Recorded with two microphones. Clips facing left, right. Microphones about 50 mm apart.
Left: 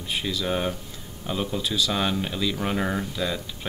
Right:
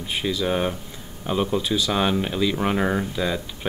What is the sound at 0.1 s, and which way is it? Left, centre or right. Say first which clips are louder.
Speech: right 3 dB; centre.